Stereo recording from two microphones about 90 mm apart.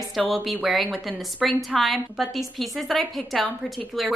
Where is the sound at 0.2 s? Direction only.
Centre (ahead or behind).